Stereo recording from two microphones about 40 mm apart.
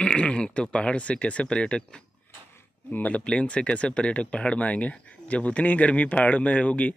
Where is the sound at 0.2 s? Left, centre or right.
Left.